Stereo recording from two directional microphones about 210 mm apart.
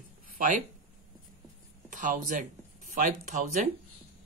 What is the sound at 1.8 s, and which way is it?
Speech, 40° right (ahead or behind).